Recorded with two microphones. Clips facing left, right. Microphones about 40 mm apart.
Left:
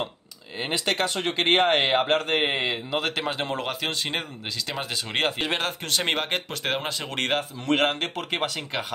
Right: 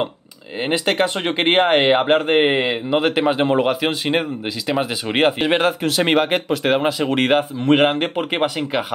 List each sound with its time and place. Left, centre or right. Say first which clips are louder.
0.6 s speech: right 7 dB; right
5.7 s speech: right 9 dB; centre
7.5 s speech: right 8 dB; right